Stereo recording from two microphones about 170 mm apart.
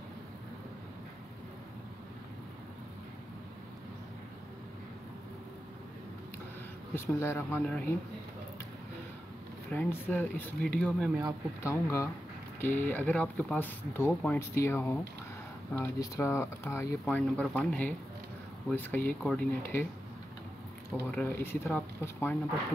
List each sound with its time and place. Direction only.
7.0 s speech: 15° left (ahead or behind)
9.7 s speech: 10° left (ahead or behind)
11.6 s speech: 15° left (ahead or behind)
21.0 s speech: 10° left (ahead or behind)